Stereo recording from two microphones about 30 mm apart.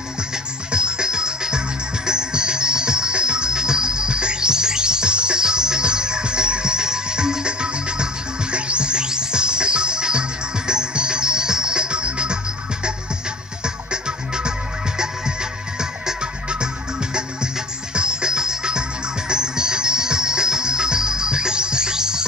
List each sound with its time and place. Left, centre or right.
0.7 s music: right
14.0 s music: right
15.8 s music: right
17.9 s music: right